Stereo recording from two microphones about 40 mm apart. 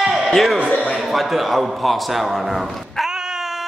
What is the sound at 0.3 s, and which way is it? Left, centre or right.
A man's voice, centre.